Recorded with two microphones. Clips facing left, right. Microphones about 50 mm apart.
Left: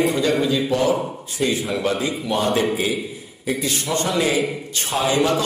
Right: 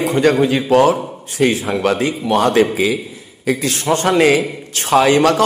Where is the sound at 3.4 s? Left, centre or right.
Right.